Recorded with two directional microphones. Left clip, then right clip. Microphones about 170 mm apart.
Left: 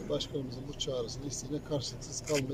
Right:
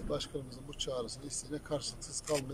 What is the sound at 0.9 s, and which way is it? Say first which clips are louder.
Speech: left 3 dB; 15° left (ahead or behind).